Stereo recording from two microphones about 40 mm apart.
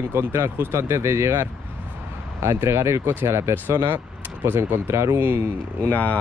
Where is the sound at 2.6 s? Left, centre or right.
Right.